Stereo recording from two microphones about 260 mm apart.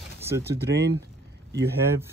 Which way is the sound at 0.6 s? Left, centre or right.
Right.